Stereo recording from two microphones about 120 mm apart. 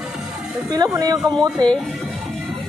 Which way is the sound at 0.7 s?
35° right (ahead or behind).